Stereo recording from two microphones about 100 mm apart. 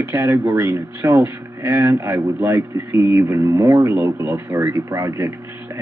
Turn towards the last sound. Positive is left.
turn(degrees=-30)  # may be behind; listen again after turning